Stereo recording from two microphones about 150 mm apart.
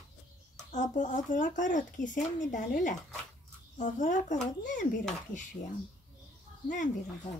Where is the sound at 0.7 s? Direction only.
55° left (ahead or behind).